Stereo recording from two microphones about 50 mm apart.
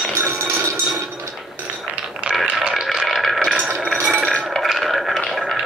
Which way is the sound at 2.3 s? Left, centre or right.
Right.